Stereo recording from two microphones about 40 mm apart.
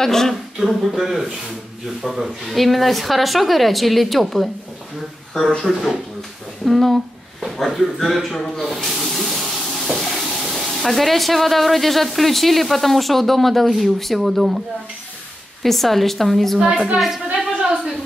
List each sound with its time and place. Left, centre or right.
0.0 s speech: centre
0.7 s speech: centre
5.6 s speech: centre
6.6 s a sound: centre
7.4 s speech: centre
15.6 s speech: centre
16.5 s speech: right